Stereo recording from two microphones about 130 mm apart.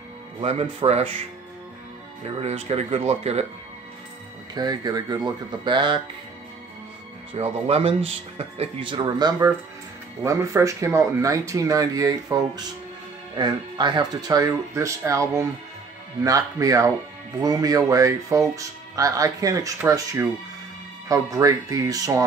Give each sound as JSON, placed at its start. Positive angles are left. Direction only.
{"t": 0.4, "sound": "speech", "side_deg": -50}
{"t": 2.2, "sound": "speech", "side_deg": -50}
{"t": 4.6, "sound": "speech", "side_deg": -30}
{"t": 7.3, "sound": "speech", "side_deg": -50}
{"t": 8.9, "sound": "speech", "side_deg": -30}
{"t": 19.8, "sound": "speech", "side_deg": -15}